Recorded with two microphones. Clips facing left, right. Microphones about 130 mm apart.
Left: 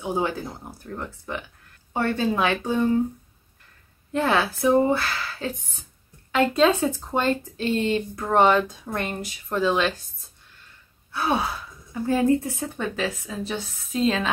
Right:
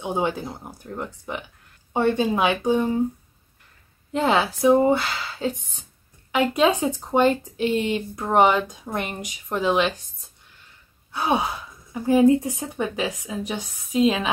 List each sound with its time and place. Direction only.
0.0 s speech: 20° right (ahead or behind)
4.1 s speech: 20° right (ahead or behind)
11.1 s speech: 15° right (ahead or behind)